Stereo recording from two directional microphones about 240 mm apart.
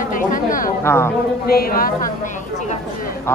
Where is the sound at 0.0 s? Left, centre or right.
Left.